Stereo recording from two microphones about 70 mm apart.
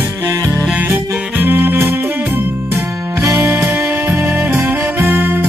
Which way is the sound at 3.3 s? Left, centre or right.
Right.